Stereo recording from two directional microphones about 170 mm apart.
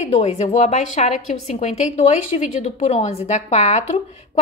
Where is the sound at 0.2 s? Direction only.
40° left (ahead or behind).